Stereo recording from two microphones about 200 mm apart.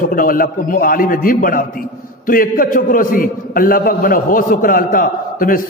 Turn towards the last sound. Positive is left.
turn(degrees=45)  # may be behind; listen again after turning